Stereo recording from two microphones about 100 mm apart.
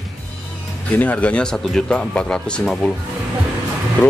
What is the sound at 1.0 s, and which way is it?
Speech, 15° left (ahead or behind).